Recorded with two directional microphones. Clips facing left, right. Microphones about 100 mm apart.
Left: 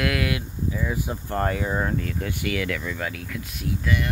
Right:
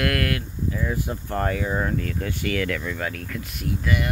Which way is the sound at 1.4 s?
15° left (ahead or behind).